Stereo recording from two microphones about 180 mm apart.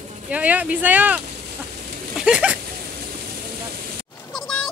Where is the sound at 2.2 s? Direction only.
5° right (ahead or behind).